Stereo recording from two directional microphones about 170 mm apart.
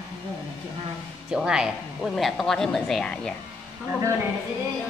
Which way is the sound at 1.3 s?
5° right (ahead or behind).